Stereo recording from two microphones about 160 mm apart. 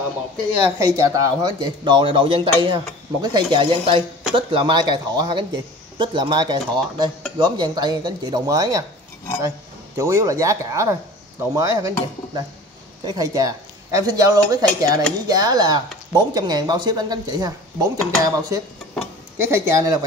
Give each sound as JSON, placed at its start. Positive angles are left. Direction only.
{"t": 0.6, "sound": "speech", "side_deg": -15}
{"t": 9.9, "sound": "speech", "side_deg": -20}
{"t": 13.0, "sound": "a man's voice", "side_deg": -25}